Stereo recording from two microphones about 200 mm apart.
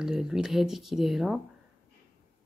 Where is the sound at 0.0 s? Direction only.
5° right (ahead or behind).